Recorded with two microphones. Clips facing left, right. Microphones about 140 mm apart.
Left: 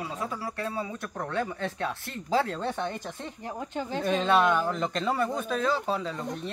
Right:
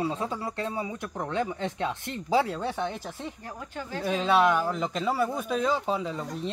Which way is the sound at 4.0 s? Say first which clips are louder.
Right 1 dB; 5° right (ahead or behind).